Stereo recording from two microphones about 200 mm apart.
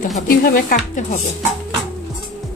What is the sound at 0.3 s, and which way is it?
Speech, 45° left (ahead or behind).